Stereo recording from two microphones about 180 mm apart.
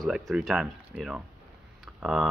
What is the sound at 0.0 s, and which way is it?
Speech, centre (ahead or behind).